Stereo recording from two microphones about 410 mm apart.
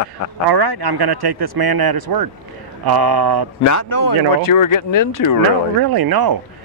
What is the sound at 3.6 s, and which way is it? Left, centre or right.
Speech, left.